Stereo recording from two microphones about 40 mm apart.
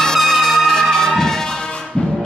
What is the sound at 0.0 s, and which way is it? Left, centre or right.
Music, centre.